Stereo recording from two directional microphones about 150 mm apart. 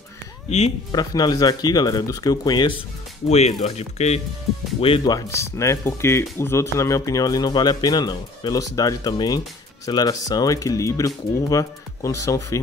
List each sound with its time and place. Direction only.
0.9 s speech: 25° left (ahead or behind)
3.3 s speech: 45° left (ahead or behind); by 12.5 s 20° left (ahead or behind)